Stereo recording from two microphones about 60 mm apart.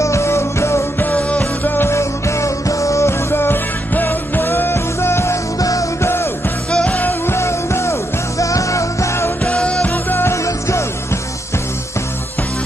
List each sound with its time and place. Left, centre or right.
0.0 s music: left
1.4 s music: left
2.0 s music: left
5.6 s music: left
6.7 s music: centre
7.0 s music: left
7.3 s music: left
9.4 s music: centre
10.2 s music: left